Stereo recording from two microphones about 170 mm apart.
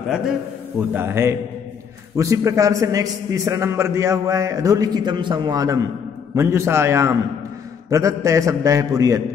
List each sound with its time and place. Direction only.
0.7 s a man's voice: 15° right (ahead or behind)